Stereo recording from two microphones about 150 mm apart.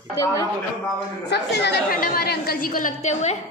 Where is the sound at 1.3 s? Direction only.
85° left.